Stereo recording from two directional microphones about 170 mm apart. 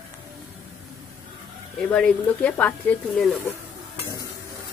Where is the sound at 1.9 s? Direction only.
5° left (ahead or behind).